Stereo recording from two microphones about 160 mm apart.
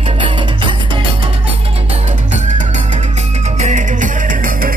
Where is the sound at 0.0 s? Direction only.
30° right (ahead or behind).